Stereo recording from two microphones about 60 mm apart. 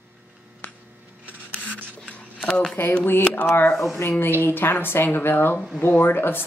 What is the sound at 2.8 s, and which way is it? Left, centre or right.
Speech, left.